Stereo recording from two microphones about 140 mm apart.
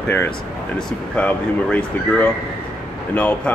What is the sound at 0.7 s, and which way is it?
Speech, 10° left (ahead or behind).